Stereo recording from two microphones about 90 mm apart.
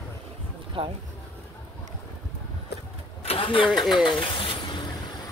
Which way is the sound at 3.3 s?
90° left.